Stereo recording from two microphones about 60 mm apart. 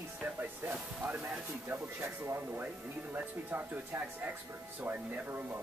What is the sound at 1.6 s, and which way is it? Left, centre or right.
Speech, right.